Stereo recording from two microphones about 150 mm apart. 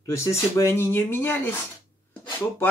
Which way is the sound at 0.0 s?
20° left (ahead or behind).